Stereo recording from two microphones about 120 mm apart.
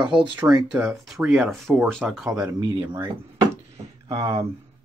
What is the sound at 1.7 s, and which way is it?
Speech, 15° right (ahead or behind).